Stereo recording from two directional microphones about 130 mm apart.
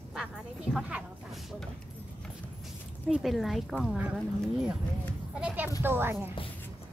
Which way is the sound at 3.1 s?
Centre (ahead or behind).